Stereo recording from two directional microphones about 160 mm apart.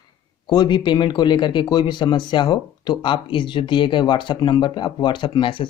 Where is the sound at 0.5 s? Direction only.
25° left (ahead or behind).